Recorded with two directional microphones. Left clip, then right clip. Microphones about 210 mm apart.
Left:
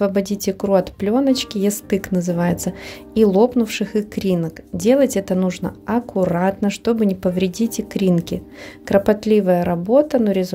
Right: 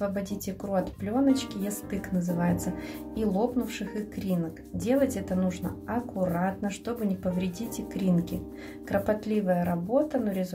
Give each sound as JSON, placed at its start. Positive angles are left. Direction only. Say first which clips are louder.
{"t": 0.0, "sound": "a woman's voice", "louder": "left 12 dB", "side_deg": 45}